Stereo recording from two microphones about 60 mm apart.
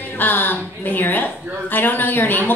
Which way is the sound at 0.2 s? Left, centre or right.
Left.